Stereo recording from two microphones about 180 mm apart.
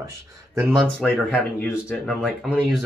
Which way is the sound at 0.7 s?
5° left (ahead or behind).